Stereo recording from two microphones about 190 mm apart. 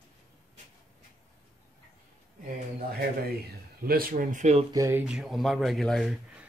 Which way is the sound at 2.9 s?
55° right (ahead or behind).